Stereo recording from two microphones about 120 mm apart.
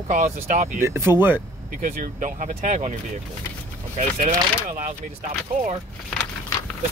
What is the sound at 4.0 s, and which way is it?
Speech, 90° right.